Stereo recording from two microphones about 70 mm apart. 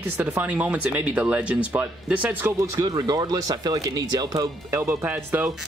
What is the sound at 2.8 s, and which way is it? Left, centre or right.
Speech, right.